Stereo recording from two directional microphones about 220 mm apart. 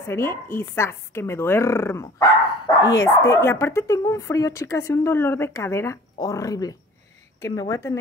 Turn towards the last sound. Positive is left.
turn(degrees=15)  # may be behind; listen again after turning